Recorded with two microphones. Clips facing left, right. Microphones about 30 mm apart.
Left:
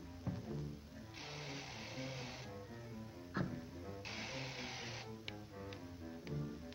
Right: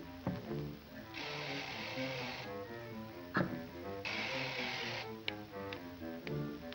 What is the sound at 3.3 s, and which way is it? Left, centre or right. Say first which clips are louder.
Music: right 6 dB; right.